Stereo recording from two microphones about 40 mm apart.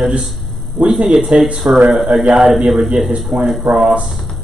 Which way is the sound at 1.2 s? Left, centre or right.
Right.